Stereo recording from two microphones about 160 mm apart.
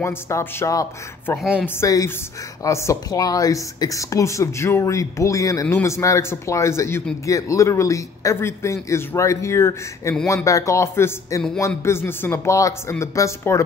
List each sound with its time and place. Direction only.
0.0 s speech: 15° left (ahead or behind)
1.4 s speech: centre (ahead or behind)
1.8 s speech: 20° left (ahead or behind)